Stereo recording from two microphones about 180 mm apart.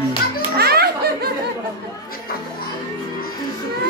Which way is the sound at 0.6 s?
60° right (ahead or behind).